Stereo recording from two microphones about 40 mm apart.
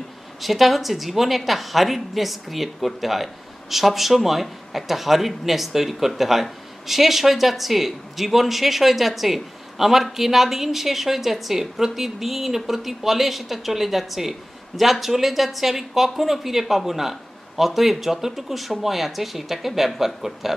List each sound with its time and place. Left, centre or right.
0.4 s a man's voice: centre